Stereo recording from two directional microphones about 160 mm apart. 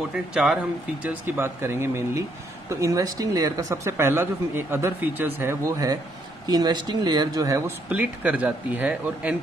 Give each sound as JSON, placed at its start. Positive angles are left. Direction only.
{"t": 0.1, "sound": "speech", "side_deg": -5}